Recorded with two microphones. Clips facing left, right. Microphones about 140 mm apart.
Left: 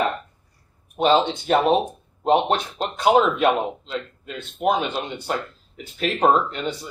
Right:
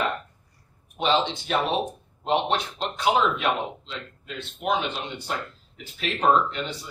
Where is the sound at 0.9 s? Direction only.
45° left (ahead or behind).